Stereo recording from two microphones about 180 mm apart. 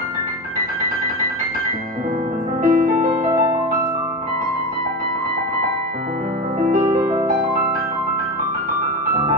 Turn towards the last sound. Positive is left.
turn(degrees=-15)  # may be behind; listen again after turning